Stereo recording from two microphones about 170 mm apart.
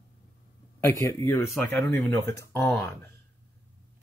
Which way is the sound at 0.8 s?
15° left (ahead or behind).